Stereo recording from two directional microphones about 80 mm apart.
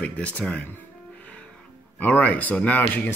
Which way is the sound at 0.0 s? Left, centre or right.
Centre.